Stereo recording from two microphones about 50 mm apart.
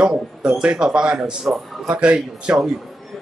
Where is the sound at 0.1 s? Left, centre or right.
Centre.